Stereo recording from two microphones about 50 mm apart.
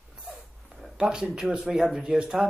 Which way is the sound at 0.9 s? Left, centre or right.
Centre.